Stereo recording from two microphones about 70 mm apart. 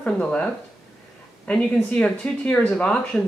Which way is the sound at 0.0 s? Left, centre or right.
Centre.